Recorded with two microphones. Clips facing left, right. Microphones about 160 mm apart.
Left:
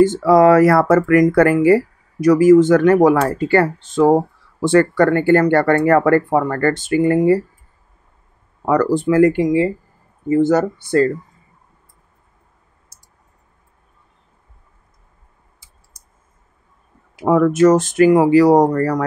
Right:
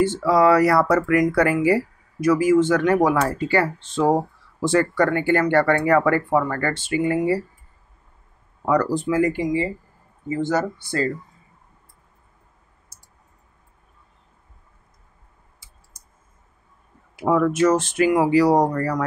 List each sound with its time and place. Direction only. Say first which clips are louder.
0.0 s speech: left 6 dB; 45° left (ahead or behind)
8.6 s speech: left 5 dB; 60° left (ahead or behind)
10.2 s speech: left 8 dB; 45° left (ahead or behind)
17.2 s speech: left 5 dB; 45° left (ahead or behind)